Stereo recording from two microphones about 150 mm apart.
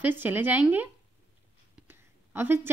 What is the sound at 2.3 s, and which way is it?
Speech, 15° right (ahead or behind).